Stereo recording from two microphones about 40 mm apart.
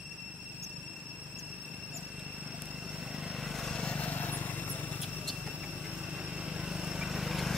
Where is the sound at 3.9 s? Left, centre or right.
Left.